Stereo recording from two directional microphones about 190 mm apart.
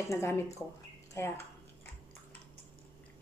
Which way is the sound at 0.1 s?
15° left (ahead or behind).